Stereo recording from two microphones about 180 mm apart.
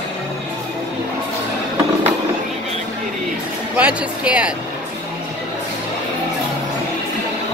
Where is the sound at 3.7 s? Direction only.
5° right (ahead or behind).